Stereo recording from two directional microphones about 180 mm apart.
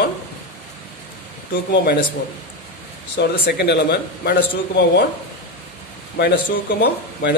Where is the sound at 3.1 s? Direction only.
65° left (ahead or behind).